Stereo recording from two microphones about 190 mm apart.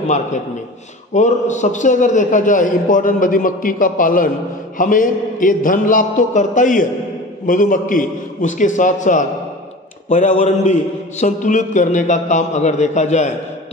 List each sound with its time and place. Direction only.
1.1 s a man's voice: 40° left (ahead or behind)